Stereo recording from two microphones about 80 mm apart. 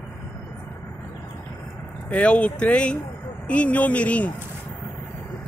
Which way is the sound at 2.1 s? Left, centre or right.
Centre.